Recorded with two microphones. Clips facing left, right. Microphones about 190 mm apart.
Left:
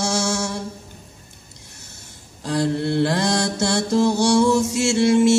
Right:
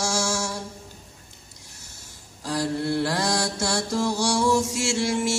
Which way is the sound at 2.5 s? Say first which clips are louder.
Left 5 dB; 25° left (ahead or behind).